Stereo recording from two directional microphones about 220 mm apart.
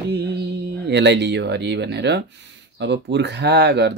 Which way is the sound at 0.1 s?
50° right (ahead or behind).